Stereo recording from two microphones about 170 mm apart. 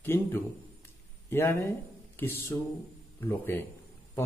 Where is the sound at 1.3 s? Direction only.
15° left (ahead or behind).